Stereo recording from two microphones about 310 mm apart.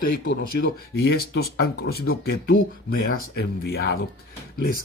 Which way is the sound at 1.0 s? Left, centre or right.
Left.